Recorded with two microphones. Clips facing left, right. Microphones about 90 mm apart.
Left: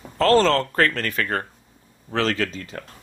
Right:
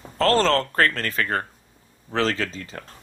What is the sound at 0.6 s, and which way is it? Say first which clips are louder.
Speech: left 1 dB; 35° right (ahead or behind).